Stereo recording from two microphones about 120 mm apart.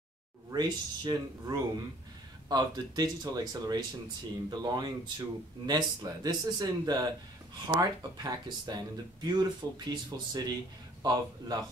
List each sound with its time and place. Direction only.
0.5 s speech: 35° right (ahead or behind)